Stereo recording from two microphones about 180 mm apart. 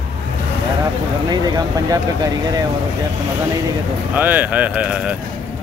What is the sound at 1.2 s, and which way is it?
Speech, 20° right (ahead or behind).